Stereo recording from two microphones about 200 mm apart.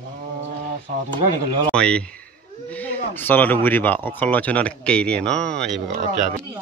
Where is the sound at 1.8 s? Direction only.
5° left (ahead or behind).